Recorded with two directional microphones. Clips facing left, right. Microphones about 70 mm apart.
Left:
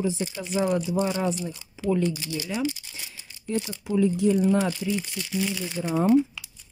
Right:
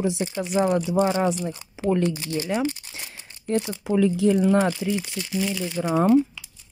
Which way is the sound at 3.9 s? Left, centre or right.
Right.